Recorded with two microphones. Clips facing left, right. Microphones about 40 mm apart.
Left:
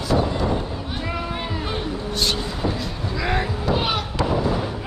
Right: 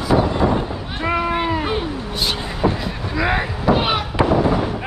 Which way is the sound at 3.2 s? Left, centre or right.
Right.